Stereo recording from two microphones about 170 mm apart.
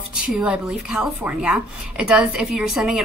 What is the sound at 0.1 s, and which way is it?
Speech, 5° right (ahead or behind).